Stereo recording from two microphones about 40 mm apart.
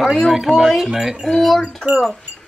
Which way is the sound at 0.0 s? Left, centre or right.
Centre.